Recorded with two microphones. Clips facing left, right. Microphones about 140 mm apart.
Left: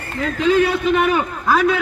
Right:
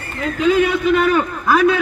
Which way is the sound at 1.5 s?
10° right (ahead or behind).